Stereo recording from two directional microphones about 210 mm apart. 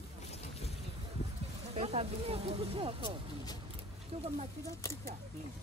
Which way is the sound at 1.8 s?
30° right (ahead or behind).